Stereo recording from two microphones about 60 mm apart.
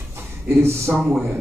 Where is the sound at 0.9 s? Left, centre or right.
Right.